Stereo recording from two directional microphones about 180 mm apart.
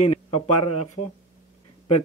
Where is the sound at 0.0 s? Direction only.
35° left (ahead or behind).